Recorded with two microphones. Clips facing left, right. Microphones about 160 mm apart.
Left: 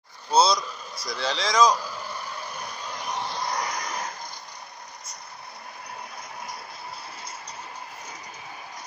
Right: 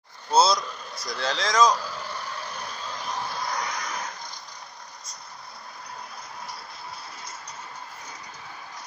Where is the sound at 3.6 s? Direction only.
45° left (ahead or behind).